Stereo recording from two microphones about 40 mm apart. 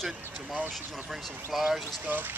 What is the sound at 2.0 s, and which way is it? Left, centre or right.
Speech, right.